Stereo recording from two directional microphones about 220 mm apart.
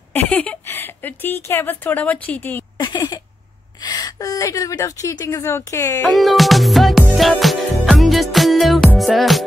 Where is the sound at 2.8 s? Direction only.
20° left (ahead or behind).